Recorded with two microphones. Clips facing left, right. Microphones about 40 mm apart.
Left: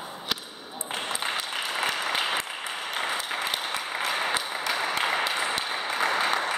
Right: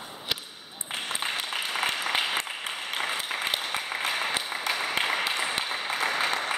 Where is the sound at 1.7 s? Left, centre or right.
Centre.